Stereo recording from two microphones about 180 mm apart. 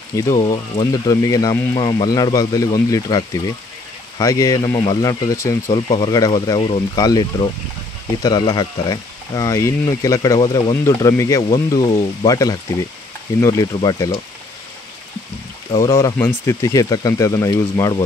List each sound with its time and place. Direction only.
0.1 s speech: 20° left (ahead or behind)
15.7 s speech: 15° left (ahead or behind)